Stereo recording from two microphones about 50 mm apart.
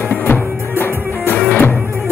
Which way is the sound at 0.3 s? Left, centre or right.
Left.